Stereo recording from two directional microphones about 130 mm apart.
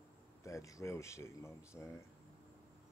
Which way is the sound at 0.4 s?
25° left (ahead or behind).